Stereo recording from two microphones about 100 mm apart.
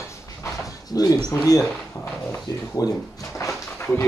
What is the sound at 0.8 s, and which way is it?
Speech, 40° left (ahead or behind).